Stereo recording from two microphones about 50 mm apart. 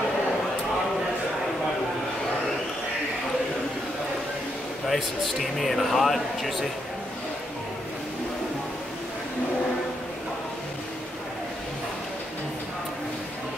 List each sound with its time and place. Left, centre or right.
4.8 s speech: centre